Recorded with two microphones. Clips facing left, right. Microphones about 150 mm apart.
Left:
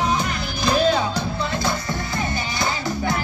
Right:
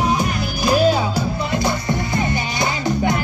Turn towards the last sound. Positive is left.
turn(degrees=-20)  # may be behind; listen again after turning